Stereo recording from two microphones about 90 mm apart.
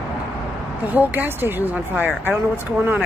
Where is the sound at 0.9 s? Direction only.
20° right (ahead or behind).